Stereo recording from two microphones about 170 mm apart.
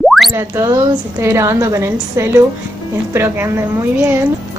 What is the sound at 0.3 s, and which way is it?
A woman's voice, 15° right (ahead or behind).